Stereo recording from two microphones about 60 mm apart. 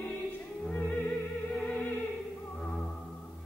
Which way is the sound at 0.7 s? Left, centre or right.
Left.